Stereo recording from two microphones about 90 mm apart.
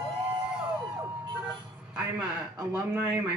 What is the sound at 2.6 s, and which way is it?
Speech, 25° right (ahead or behind).